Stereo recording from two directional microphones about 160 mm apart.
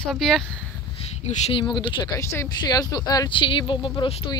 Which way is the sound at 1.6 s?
30° left (ahead or behind).